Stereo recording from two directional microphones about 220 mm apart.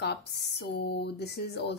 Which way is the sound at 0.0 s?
50° left (ahead or behind).